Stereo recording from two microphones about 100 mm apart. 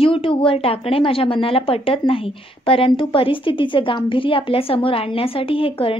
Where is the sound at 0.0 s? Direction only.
65° left (ahead or behind).